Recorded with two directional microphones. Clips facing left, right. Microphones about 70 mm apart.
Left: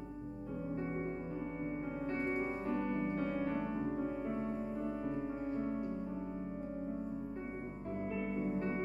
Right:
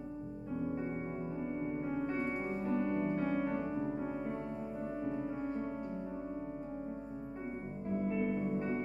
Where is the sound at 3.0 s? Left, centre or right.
Centre.